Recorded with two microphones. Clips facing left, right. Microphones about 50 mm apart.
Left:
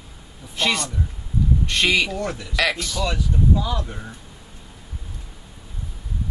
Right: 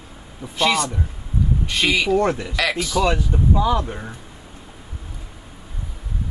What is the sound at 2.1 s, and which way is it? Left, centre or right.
Speech, right.